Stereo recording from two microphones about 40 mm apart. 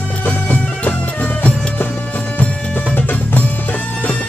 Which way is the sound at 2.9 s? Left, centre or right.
Left.